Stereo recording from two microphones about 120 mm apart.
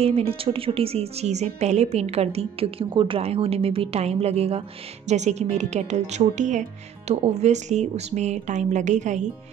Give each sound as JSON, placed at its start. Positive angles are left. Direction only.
{"t": 0.0, "sound": "a woman's voice", "side_deg": -55}
{"t": 7.1, "sound": "speech", "side_deg": -70}